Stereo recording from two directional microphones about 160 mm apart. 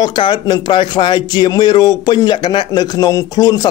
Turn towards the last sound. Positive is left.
turn(degrees=25)  # may be behind; listen again after turning